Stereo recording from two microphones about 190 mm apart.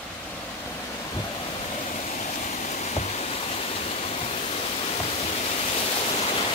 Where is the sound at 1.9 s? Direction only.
40° left (ahead or behind).